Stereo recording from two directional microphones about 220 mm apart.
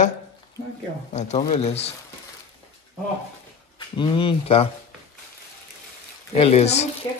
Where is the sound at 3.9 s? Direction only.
25° left (ahead or behind).